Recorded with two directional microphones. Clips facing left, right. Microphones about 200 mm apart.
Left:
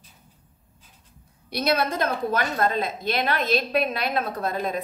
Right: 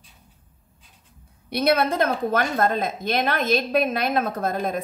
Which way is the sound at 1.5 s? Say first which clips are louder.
Right 3 dB; 55° right (ahead or behind).